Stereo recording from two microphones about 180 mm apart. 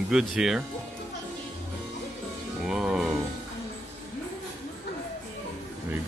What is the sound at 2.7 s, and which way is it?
Music, 5° right (ahead or behind).